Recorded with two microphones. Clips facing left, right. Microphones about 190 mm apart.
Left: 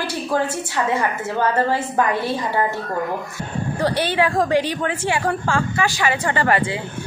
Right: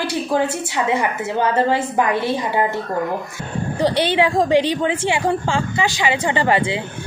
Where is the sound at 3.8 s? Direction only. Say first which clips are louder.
Right 3 dB; 20° right (ahead or behind).